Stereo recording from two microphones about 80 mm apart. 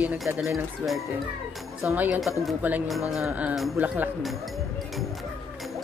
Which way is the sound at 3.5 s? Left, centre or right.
Centre.